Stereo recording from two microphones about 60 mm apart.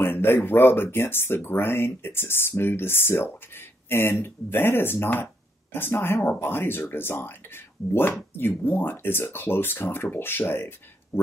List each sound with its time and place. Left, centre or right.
0.0 s speech: left